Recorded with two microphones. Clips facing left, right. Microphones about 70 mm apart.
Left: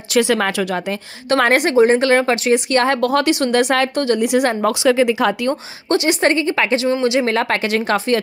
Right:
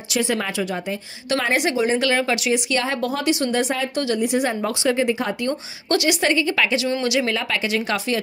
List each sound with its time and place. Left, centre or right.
0.2 s a woman's voice: left
3.9 s speech: left
4.2 s speech: left
5.9 s a woman's voice: left
7.3 s speech: left